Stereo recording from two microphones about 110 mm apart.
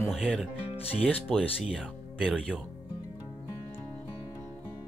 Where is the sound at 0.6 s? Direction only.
60° left (ahead or behind).